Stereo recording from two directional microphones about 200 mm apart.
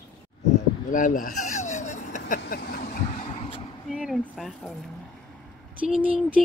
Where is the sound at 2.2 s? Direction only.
50° left (ahead or behind).